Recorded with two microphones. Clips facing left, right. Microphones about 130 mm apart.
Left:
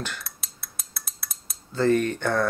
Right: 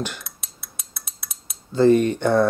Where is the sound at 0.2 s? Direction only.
Centre (ahead or behind).